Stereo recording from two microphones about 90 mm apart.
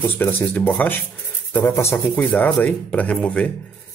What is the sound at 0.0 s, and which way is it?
Speech, 20° left (ahead or behind).